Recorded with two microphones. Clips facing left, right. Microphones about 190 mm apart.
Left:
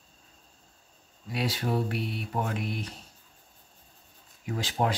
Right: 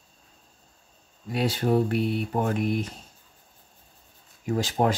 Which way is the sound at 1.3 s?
50° right (ahead or behind).